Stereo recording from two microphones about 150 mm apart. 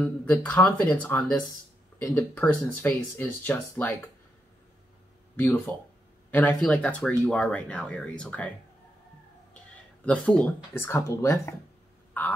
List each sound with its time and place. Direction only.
0.0 s speech: 10° left (ahead or behind)
5.3 s speech: 10° left (ahead or behind)
10.0 s speech: 10° left (ahead or behind)
12.2 s fowl: 10° left (ahead or behind)